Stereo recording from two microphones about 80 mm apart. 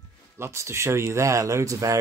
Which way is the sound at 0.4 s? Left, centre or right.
Right.